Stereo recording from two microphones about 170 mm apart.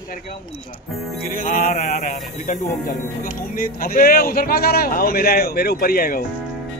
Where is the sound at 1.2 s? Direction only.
50° left (ahead or behind).